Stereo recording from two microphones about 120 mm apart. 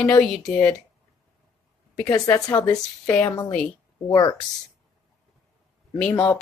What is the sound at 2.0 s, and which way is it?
A woman's voice, 25° left (ahead or behind).